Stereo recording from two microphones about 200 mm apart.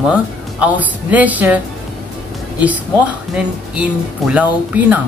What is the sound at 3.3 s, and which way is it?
A woman's voice, 5° right (ahead or behind).